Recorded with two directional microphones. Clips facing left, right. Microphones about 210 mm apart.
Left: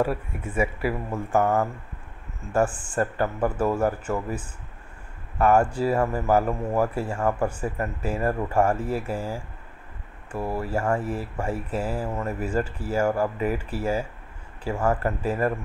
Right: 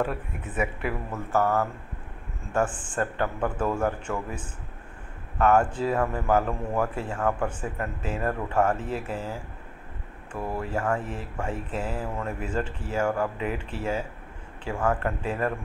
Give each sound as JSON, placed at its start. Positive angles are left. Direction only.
{"t": 0.0, "sound": "a man's voice", "side_deg": 10}
{"t": 5.4, "sound": "a man's voice", "side_deg": 10}